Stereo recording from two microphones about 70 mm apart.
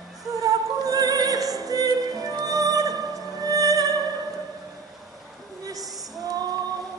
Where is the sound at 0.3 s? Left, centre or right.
Right.